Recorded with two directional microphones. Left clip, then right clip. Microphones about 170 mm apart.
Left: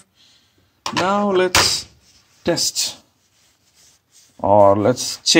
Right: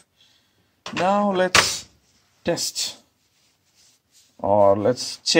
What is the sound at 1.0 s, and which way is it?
Speech, 25° right (ahead or behind).